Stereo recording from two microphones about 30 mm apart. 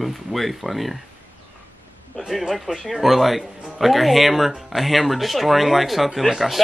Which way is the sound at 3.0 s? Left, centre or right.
Centre.